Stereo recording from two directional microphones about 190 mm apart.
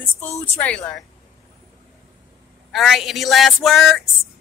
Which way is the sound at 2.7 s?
Centre (ahead or behind).